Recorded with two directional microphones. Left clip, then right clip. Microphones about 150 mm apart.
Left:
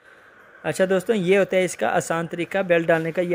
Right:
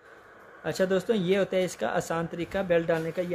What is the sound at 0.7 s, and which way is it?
Speech, 35° left (ahead or behind).